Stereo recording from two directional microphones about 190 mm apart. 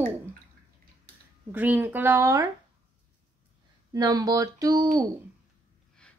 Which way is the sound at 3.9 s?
20° right (ahead or behind).